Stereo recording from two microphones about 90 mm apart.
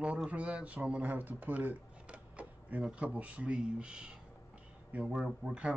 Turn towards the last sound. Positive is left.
turn(degrees=-5)  # may be behind; listen again after turning